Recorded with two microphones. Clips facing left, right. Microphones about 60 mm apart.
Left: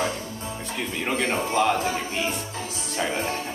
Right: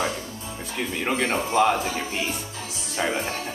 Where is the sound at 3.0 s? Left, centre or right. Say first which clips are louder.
Right 2 dB; centre.